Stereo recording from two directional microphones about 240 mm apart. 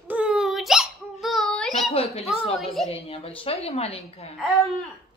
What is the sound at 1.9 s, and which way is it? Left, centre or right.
A woman's voice, left.